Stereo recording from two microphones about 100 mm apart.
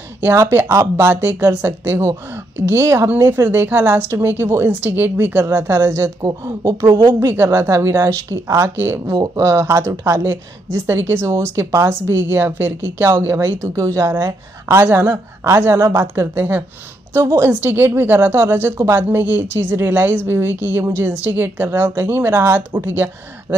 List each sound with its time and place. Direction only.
0.2 s a woman's voice: 30° right (ahead or behind)
9.1 s a woman's voice: 35° right (ahead or behind)